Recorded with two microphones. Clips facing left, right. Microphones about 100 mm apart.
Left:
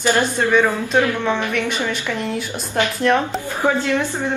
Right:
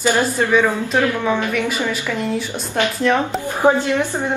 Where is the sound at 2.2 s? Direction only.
Centre (ahead or behind).